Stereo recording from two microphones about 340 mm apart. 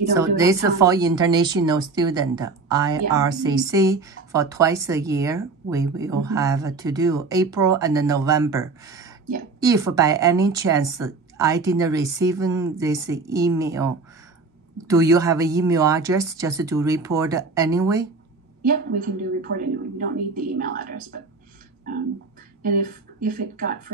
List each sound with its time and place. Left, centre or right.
0.4 s a woman's voice: centre
18.6 s a woman's voice: right
22.6 s a woman's voice: right